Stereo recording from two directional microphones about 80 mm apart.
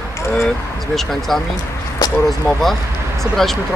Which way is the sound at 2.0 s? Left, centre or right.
Left.